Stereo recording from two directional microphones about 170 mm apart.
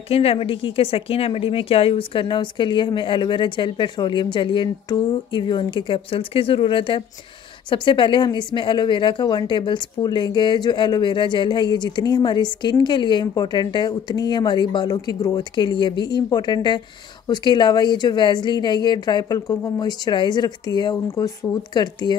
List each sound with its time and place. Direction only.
0.1 s a woman's voice: 35° left (ahead or behind)